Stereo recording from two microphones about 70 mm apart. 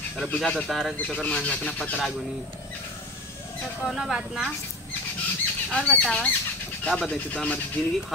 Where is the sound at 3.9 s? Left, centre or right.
Centre.